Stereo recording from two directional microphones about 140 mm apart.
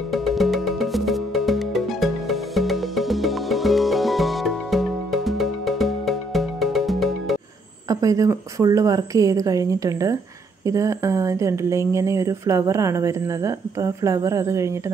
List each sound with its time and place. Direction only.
0.1 s music: centre (ahead or behind)
7.9 s speech: 25° right (ahead or behind)